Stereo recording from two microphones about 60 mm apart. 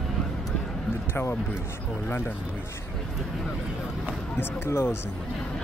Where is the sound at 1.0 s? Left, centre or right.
Left.